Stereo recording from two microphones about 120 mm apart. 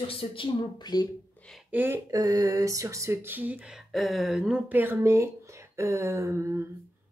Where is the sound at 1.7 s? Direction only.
20° right (ahead or behind); by 4.6 s 5° right (ahead or behind).